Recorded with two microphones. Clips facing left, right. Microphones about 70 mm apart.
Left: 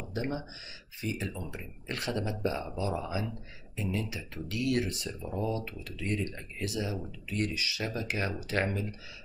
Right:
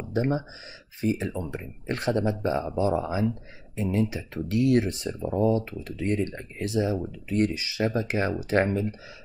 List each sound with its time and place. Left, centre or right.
0.1 s speech: right